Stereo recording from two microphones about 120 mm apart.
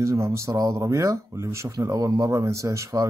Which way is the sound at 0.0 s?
25° right (ahead or behind).